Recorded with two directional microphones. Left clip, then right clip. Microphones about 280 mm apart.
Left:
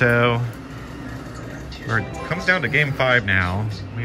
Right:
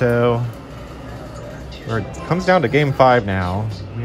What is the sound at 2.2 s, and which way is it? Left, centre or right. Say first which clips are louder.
Speech: right 6 dB; right.